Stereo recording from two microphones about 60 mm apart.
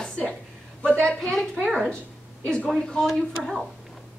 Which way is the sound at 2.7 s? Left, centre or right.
Centre.